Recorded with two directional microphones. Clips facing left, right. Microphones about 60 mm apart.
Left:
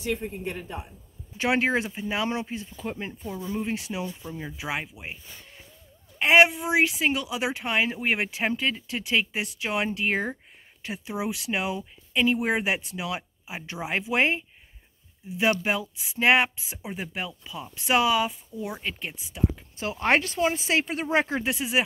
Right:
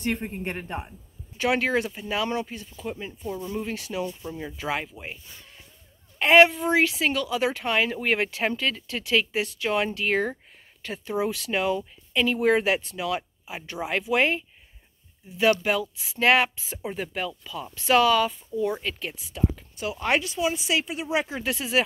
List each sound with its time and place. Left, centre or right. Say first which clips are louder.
0.0 s speech: right 1 dB; right
1.4 s speech: even; left
3.2 s speech: right 1 dB; centre
16.0 s speech: even; centre
19.8 s speech: left 2 dB; left
21.5 s speech: right 3 dB; centre